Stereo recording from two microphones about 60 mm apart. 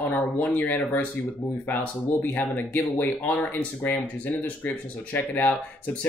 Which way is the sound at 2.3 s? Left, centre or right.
Left.